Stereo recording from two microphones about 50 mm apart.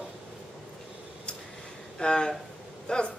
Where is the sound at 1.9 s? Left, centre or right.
Centre.